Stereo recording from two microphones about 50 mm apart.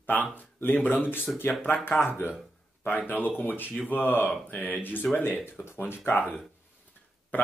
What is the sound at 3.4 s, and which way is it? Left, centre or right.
A man's voice, left.